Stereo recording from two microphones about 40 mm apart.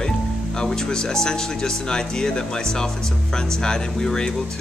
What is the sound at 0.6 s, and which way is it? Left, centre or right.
Speech, centre.